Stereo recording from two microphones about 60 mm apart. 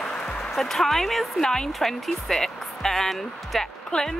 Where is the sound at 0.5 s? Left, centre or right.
Centre.